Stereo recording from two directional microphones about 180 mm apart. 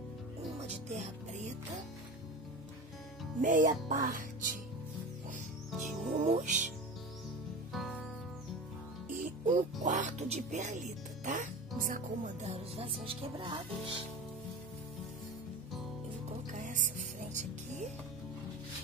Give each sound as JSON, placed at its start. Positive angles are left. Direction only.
{"t": 0.6, "sound": "music", "side_deg": -40}
{"t": 3.3, "sound": "speech", "side_deg": -45}
{"t": 6.1, "sound": "speech", "side_deg": -40}
{"t": 7.7, "sound": "music", "side_deg": 0}
{"t": 9.1, "sound": "speech", "side_deg": -45}
{"t": 16.5, "sound": "music", "side_deg": -45}